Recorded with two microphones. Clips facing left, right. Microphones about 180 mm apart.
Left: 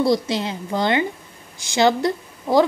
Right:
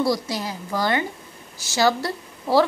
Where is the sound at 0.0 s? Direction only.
25° left (ahead or behind).